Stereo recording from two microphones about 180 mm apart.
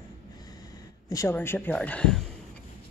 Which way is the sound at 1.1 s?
20° left (ahead or behind).